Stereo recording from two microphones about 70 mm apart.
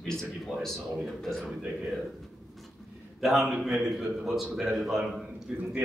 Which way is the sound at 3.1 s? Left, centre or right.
Centre.